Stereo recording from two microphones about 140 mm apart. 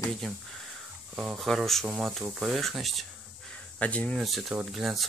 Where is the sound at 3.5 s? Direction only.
10° left (ahead or behind).